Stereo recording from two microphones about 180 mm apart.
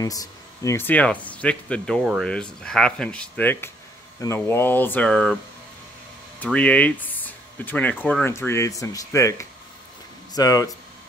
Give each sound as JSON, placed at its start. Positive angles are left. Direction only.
{"t": 0.0, "sound": "speech", "side_deg": 20}
{"t": 6.4, "sound": "speech", "side_deg": 5}